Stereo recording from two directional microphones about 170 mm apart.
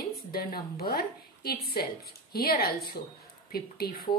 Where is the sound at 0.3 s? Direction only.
65° left (ahead or behind).